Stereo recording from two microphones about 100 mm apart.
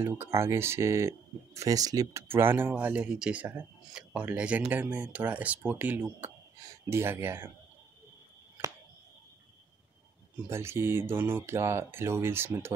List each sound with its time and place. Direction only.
0.0 s speech: 25° right (ahead or behind)
2.2 s speech: 20° right (ahead or behind)
10.5 s speech: 25° right (ahead or behind)